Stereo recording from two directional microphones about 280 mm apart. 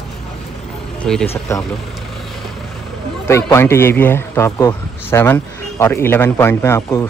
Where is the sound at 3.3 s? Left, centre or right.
Centre.